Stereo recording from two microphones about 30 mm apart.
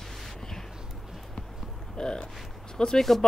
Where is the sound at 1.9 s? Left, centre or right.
Left.